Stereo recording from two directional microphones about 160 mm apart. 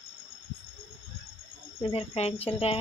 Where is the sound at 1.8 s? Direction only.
35° left (ahead or behind).